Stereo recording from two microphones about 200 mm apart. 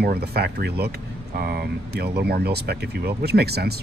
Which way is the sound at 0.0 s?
50° right (ahead or behind).